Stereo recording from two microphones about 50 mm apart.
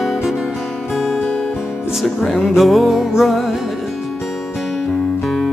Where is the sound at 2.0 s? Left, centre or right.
Centre.